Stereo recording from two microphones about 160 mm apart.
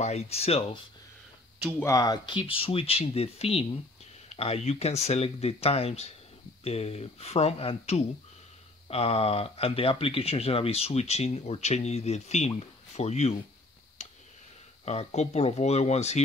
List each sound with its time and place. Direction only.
0.0 s speech: 40° left (ahead or behind)
1.8 s speech: 20° left (ahead or behind); by 13.3 s 45° left (ahead or behind)
14.9 s speech: 45° left (ahead or behind)